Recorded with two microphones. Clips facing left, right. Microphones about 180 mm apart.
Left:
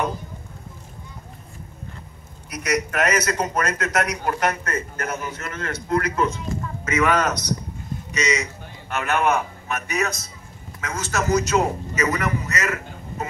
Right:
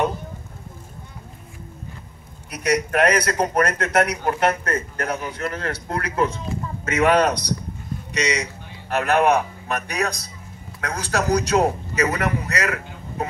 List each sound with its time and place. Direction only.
2.5 s a man's voice: 30° right (ahead or behind)